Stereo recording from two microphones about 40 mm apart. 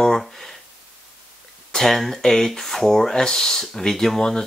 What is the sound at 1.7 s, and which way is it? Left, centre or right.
Speech, centre.